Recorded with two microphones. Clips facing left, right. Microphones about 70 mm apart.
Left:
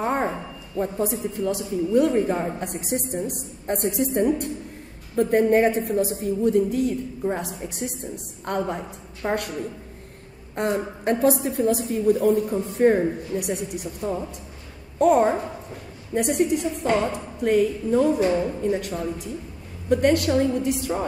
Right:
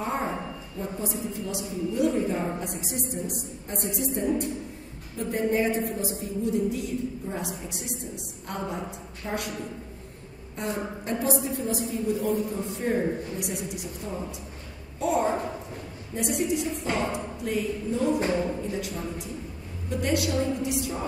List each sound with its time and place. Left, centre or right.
0.0 s a sound: left
0.7 s a woman's voice: left
10.5 s a woman's voice: left
15.0 s a woman's voice: left